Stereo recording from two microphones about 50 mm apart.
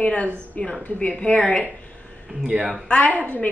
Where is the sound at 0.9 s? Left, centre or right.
Left.